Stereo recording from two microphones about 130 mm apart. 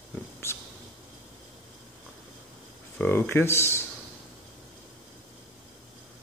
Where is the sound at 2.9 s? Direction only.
15° left (ahead or behind).